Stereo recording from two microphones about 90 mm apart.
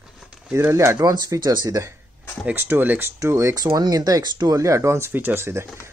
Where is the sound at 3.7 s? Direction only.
45° right (ahead or behind).